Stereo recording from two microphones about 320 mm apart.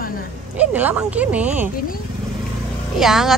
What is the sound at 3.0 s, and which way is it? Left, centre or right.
Speech, centre.